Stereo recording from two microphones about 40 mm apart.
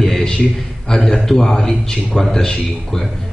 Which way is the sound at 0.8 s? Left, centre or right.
Centre.